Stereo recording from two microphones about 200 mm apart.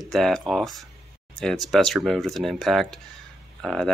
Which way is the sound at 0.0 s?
Centre (ahead or behind).